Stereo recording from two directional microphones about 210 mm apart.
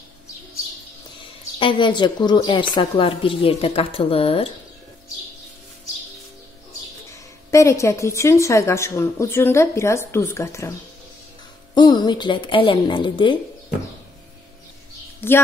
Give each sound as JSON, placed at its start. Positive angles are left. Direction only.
{"t": 1.6, "sound": "a woman's voice", "side_deg": 25}
{"t": 7.5, "sound": "a woman's voice", "side_deg": 15}
{"t": 15.1, "sound": "speech", "side_deg": 10}